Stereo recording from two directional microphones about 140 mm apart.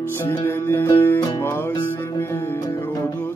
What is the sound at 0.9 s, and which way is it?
Music, 15° left (ahead or behind).